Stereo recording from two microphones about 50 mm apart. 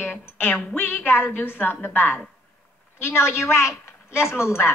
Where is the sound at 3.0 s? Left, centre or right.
Left.